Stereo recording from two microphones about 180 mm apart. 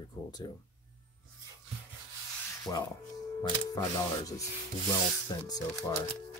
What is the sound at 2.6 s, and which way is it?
Speech, 20° left (ahead or behind).